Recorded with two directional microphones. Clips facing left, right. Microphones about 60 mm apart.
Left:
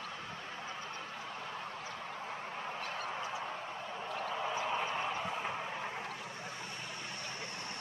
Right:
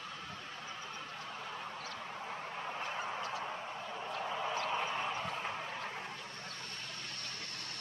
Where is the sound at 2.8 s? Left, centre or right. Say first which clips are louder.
Right 1 dB; centre.